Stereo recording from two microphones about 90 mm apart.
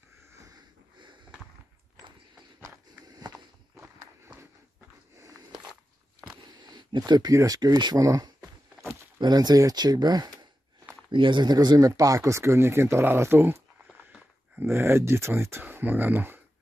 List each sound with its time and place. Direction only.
6.4 s speech: 50° right (ahead or behind)
11.1 s speech: 65° right (ahead or behind); by 13.6 s 25° right (ahead or behind)
14.6 s speech: 30° right (ahead or behind)